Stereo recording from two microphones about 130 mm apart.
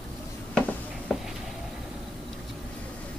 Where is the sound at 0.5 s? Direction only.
5° left (ahead or behind).